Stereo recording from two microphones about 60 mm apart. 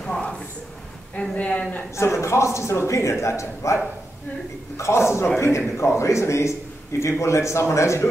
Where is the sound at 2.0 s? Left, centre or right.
Left.